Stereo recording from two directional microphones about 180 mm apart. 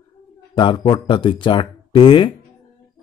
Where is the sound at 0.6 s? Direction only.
25° left (ahead or behind).